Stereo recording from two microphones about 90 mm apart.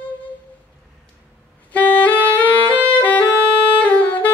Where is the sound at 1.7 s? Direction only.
20° left (ahead or behind).